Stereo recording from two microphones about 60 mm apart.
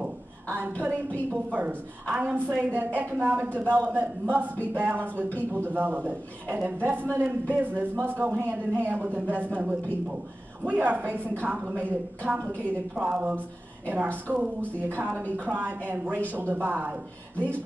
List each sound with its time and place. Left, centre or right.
0.5 s a woman's voice: right